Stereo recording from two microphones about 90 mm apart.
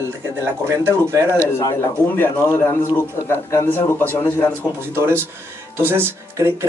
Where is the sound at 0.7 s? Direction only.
30° right (ahead or behind).